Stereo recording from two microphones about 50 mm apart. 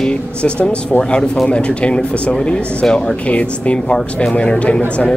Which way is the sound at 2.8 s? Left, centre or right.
Centre.